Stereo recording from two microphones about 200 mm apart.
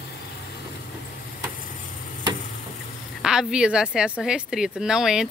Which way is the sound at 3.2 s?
5° right (ahead or behind).